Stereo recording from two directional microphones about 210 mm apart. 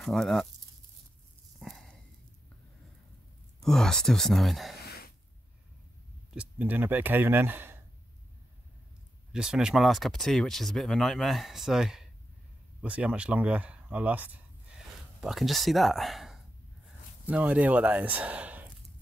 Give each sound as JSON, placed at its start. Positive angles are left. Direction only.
{"t": 0.0, "sound": "speech", "side_deg": 0}
{"t": 1.6, "sound": "a sound", "side_deg": 0}
{"t": 3.6, "sound": "speech", "side_deg": 0}
{"t": 4.8, "sound": "gasp", "side_deg": 45}
{"t": 6.3, "sound": "speech", "side_deg": -10}
{"t": 9.3, "sound": "speech", "side_deg": -5}